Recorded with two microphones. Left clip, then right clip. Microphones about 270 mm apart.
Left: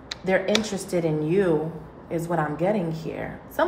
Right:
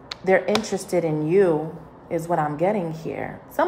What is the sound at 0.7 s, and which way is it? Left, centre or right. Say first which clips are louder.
A woman's voice: right 2 dB; right.